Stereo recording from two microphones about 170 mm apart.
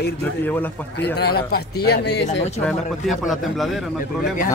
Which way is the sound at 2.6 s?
Centre (ahead or behind).